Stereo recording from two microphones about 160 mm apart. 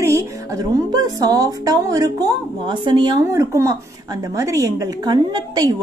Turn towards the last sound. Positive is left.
turn(degrees=-25)  # may be behind; listen again after turning